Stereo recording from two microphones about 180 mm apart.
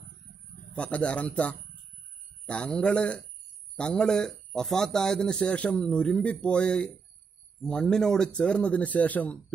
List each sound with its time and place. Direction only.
0.7 s a man's voice: 5° left (ahead or behind)